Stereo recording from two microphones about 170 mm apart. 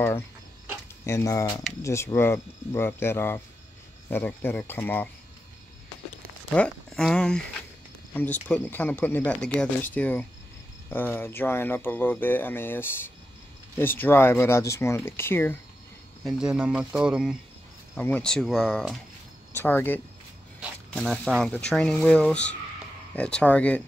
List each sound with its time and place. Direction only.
1.0 s speech: 15° left (ahead or behind)
6.5 s speech: 5° left (ahead or behind)
16.3 s speech: 5° right (ahead or behind)
17.9 s speech: 10° left (ahead or behind)